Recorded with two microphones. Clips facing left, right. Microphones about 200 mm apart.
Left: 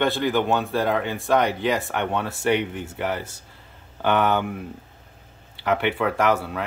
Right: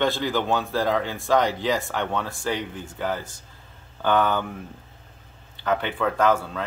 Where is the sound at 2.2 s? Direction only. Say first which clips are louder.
Left 6 dB; 70° left (ahead or behind).